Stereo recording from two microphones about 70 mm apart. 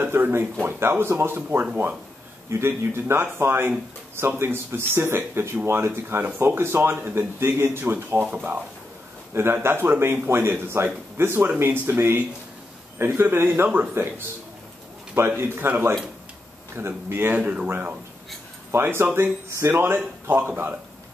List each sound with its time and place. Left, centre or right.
0.0 s speech: right
9.3 s speech: right
15.1 s speech: right